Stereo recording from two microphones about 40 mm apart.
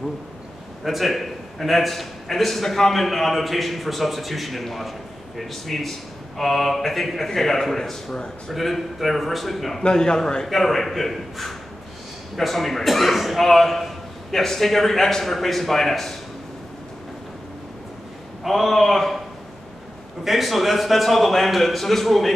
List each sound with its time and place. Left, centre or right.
0.8 s a man's voice: centre
9.8 s a man's voice: centre
10.4 s a man's voice: centre
18.4 s a man's voice: centre
20.2 s a man's voice: centre